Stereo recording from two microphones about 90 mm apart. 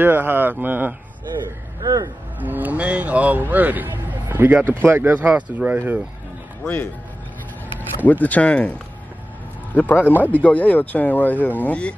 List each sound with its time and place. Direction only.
0.0 s speech: 20° right (ahead or behind)
1.8 s speech: 40° right (ahead or behind)
2.4 s speech: 20° right (ahead or behind)
8.1 s speech: 15° left (ahead or behind)
9.8 s speech: 20° left (ahead or behind)